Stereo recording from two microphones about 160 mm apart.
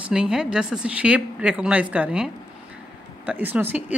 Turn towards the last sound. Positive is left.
turn(degrees=-10)  # may be behind; listen again after turning